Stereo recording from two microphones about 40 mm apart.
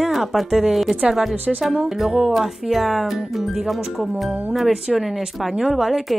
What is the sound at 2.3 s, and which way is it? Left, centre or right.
Speech, centre.